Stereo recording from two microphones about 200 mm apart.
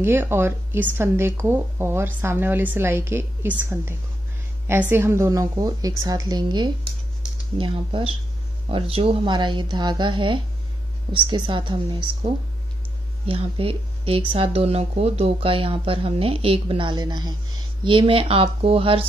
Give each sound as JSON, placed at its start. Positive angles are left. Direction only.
{"t": 0.0, "sound": "a woman's voice", "side_deg": -10}
{"t": 13.3, "sound": "speech", "side_deg": -30}